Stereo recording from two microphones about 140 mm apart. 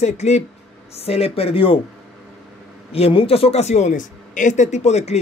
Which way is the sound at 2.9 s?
40° left (ahead or behind).